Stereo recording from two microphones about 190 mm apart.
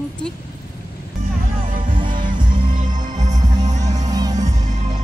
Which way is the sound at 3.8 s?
20° right (ahead or behind).